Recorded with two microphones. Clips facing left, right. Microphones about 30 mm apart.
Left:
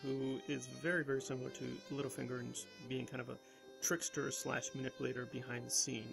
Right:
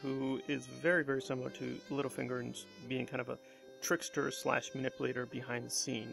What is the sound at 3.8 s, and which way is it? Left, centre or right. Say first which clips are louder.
Speech: right 5 dB; right.